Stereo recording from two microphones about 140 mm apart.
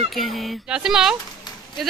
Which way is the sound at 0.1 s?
Centre (ahead or behind).